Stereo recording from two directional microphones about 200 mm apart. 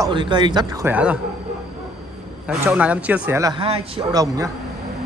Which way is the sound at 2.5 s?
5° right (ahead or behind).